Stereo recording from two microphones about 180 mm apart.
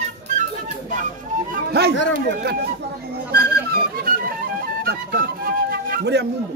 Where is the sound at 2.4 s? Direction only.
60° right (ahead or behind).